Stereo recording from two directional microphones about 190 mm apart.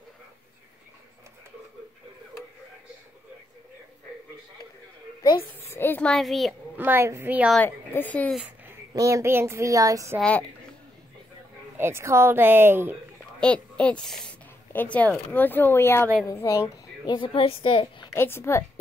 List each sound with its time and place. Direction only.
5.2 s music: 15° left (ahead or behind); by 6.5 s centre (ahead or behind)
6.8 s speech: 10° right (ahead or behind)
7.5 s a woman's voice: 10° left (ahead or behind)
8.4 s a sound: 10° right (ahead or behind)
8.9 s speech: 15° right (ahead or behind)
11.7 s speech: 15° right (ahead or behind)
13.4 s a woman's voice: 5° left (ahead or behind); by 18.0 s 25° left (ahead or behind)
18.1 s a woman's voice: 10° left (ahead or behind)